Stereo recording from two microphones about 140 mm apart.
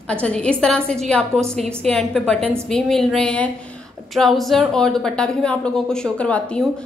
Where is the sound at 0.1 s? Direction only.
5° left (ahead or behind).